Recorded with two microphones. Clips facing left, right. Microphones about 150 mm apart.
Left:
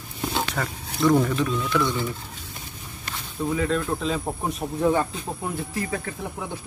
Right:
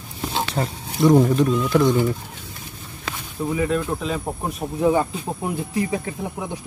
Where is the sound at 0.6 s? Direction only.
20° right (ahead or behind).